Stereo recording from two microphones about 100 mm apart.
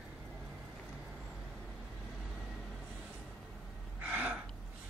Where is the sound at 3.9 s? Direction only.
15° right (ahead or behind).